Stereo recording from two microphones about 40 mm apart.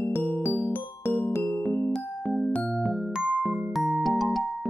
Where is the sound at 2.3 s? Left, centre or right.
Left.